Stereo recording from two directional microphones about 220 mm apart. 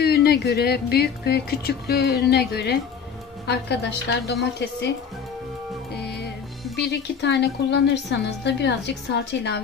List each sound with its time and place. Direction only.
0.0 s speech: 45° left (ahead or behind)
6.8 s speech: 50° left (ahead or behind)